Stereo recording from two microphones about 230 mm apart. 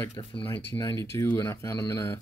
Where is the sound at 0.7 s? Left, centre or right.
Centre.